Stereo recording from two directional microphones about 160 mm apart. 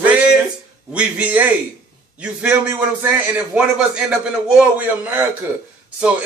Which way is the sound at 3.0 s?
10° right (ahead or behind).